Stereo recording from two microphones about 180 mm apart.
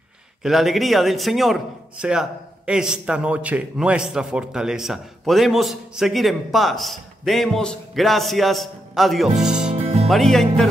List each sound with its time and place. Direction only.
0.4 s a man's voice: centre (ahead or behind)
9.8 s music: 35° right (ahead or behind)
10.0 s a man's voice: centre (ahead or behind)